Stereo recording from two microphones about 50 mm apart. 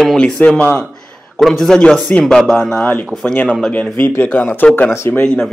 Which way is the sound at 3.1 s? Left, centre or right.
Right.